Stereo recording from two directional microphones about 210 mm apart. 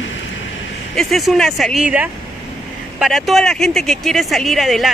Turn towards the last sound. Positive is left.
turn(degrees=0)  # may be behind; listen again after turning